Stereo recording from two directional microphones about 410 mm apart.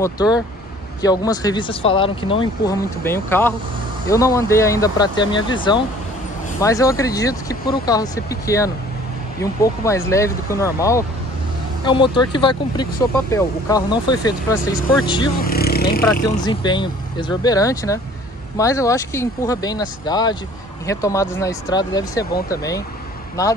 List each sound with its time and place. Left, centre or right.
0.0 s speech: centre
15.5 s vehicle: left
16.0 s speech: centre